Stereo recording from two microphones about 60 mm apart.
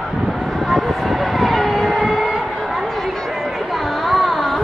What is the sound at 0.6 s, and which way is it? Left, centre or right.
Vehicle, centre.